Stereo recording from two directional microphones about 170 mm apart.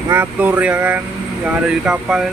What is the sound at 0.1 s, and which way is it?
Speech, 10° right (ahead or behind).